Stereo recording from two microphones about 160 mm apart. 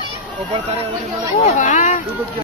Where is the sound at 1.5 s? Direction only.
50° left (ahead or behind).